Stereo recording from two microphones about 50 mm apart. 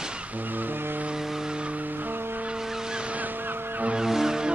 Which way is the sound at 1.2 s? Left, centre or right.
Centre.